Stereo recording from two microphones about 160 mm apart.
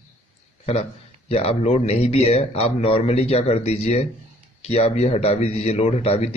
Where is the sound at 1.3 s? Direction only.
40° left (ahead or behind).